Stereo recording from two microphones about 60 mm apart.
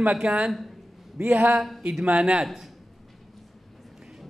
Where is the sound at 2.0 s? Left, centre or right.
Centre.